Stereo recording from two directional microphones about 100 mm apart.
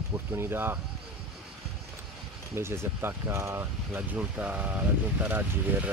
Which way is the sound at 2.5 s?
25° right (ahead or behind).